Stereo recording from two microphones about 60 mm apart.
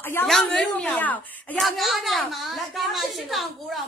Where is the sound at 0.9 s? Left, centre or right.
Left.